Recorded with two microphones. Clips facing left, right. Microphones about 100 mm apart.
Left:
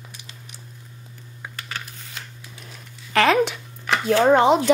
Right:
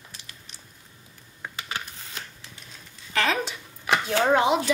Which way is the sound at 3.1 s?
70° left (ahead or behind).